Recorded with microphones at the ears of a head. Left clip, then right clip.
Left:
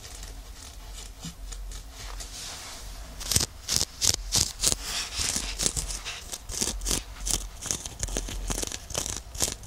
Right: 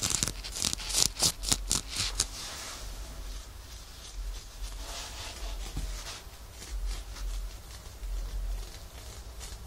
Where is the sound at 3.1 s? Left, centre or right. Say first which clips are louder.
Left 19 dB; left.